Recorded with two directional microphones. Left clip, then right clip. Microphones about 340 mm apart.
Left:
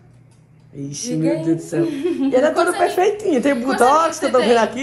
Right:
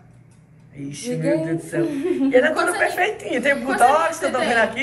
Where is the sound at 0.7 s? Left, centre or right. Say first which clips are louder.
Left 4 dB; centre.